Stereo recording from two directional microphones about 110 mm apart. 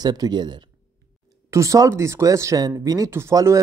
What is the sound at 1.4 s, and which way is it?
Speech, 30° right (ahead or behind).